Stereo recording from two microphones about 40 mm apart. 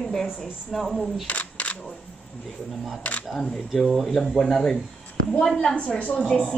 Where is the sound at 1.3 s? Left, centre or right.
Left.